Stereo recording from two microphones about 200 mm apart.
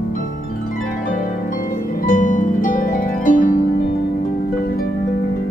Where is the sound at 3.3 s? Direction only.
40° left (ahead or behind).